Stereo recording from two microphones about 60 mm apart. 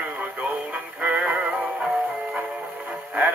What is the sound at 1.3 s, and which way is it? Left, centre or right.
Music, centre.